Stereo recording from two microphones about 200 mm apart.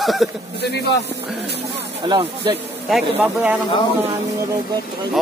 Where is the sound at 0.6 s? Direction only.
55° left (ahead or behind).